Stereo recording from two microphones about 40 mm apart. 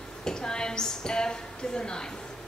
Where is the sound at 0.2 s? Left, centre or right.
Centre.